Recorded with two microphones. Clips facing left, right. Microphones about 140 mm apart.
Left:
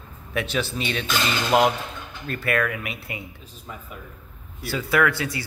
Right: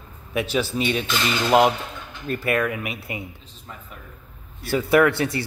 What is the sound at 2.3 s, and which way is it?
Speech, 15° right (ahead or behind).